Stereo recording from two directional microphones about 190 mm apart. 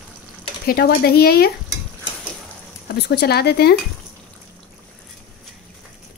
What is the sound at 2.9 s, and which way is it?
Speech, 60° left (ahead or behind).